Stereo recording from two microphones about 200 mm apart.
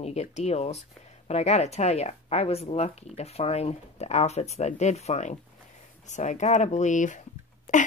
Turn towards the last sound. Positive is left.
turn(degrees=40)  # may be behind; listen again after turning